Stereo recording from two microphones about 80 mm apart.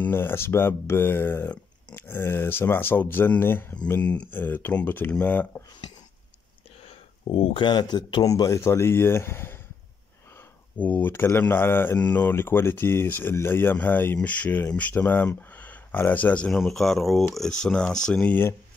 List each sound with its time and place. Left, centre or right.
0.0 s speech: left
4.0 s speech: centre
4.4 s speech: left
7.5 s speech: left
8.3 s speech: left
10.8 s speech: left
18.2 s speech: left